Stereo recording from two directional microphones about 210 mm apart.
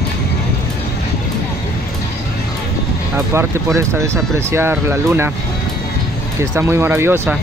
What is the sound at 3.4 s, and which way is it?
Speech, 15° right (ahead or behind).